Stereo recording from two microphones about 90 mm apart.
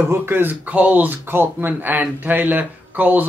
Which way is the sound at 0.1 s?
25° right (ahead or behind).